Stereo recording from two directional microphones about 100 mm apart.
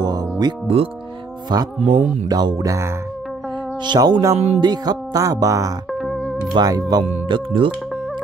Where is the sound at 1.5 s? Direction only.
45° right (ahead or behind).